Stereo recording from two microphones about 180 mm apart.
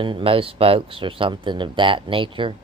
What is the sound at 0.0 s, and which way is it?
Speech, 30° right (ahead or behind).